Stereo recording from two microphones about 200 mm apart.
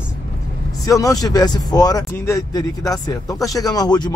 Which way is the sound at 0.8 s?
15° left (ahead or behind).